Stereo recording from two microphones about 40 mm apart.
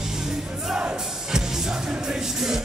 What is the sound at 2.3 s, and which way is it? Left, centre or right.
Music, centre.